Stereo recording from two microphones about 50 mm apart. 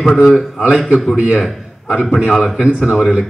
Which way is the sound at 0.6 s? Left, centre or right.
Centre.